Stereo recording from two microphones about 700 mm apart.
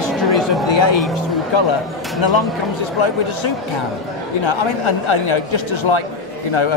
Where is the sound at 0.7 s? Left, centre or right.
Left.